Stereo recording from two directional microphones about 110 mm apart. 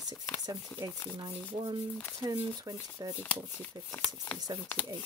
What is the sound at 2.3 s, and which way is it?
Speech, 35° right (ahead or behind).